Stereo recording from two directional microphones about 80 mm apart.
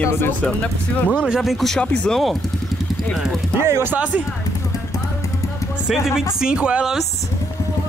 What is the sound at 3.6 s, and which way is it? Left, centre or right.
Speech, right.